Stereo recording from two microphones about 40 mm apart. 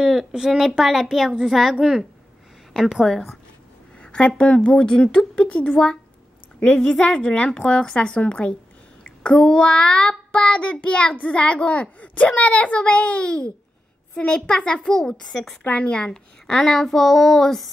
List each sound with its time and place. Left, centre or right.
0.0 s a sound: centre
0.5 s a child's voice: centre
4.0 s a sound: left
4.6 s child singing: left
6.6 s child singing: left
9.4 s child singing: centre
11.1 s a child's voice: left
14.1 s child singing: left
15.2 s a child's voice: centre
15.6 s a woman's voice: left; by 17.6 s centre